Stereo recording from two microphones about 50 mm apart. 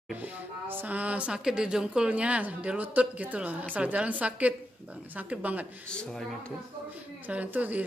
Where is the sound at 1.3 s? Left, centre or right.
Centre; by 5.7 s right.